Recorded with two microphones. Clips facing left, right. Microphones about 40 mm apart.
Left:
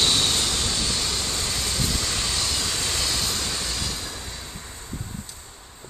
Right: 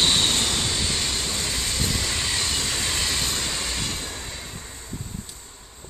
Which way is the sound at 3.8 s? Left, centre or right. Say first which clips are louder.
Right 1 dB; right.